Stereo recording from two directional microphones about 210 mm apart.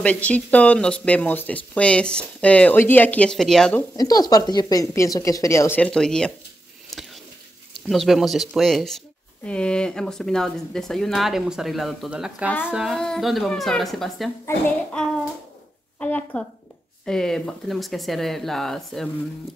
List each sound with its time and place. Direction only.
0.0 s speech: 5° left (ahead or behind)
3.9 s speech: 20° left (ahead or behind)
6.9 s a sound: centre (ahead or behind)
7.9 s speech: centre (ahead or behind)